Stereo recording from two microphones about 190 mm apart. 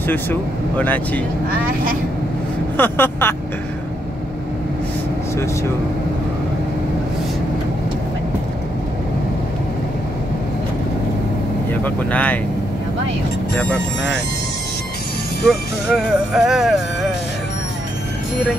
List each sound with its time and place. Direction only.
0.0 s speech: 10° left (ahead or behind)
2.8 s speech: 10° left (ahead or behind)
5.3 s speech: 15° left (ahead or behind)
11.8 s speech: 10° left (ahead or behind)
13.6 s speech: 5° left (ahead or behind)
15.4 s speech: centre (ahead or behind)